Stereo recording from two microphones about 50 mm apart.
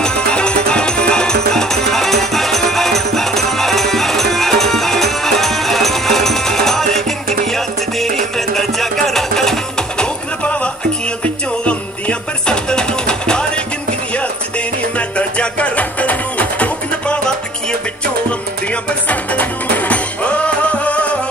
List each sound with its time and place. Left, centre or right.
0.0 s music: centre
9.9 s a sound: left
11.2 s music: left
15.0 s music: left
18.7 s music: left